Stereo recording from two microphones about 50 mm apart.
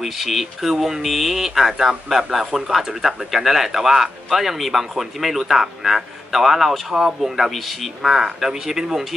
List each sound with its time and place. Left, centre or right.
0.0 s speech: centre